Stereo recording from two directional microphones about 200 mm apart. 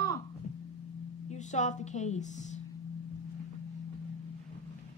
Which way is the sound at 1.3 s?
35° left (ahead or behind).